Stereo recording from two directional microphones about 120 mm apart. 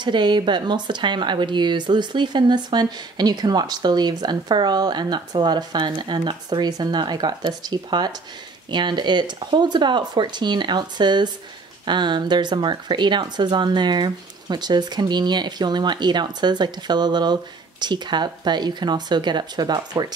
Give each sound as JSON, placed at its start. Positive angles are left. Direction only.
{"t": 0.0, "sound": "speech", "side_deg": -40}